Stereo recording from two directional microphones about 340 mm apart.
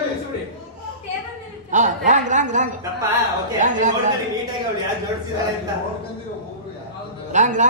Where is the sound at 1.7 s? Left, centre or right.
Right.